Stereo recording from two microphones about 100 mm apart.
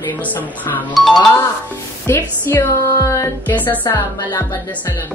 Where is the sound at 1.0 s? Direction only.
Centre (ahead or behind).